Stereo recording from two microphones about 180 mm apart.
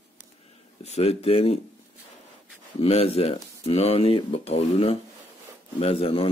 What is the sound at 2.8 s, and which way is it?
Speech, 35° left (ahead or behind).